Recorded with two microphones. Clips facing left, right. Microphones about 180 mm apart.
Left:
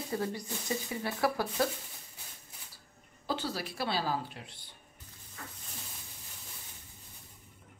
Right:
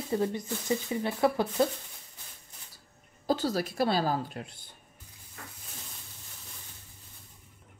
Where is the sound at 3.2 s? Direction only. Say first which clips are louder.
Right 7 dB; 40° right (ahead or behind).